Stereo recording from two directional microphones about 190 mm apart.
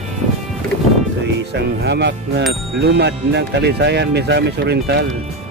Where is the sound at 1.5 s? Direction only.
65° right (ahead or behind).